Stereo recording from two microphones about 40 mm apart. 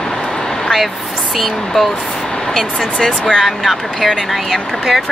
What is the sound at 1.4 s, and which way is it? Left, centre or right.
Speech, centre.